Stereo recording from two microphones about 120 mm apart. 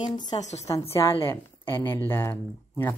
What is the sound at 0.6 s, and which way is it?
A woman's voice, 25° left (ahead or behind).